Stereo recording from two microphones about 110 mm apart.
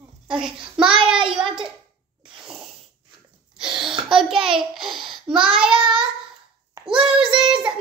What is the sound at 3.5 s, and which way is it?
A child's voice, 5° right (ahead or behind).